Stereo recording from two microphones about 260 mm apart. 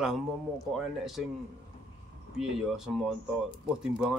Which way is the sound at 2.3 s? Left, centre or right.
Centre.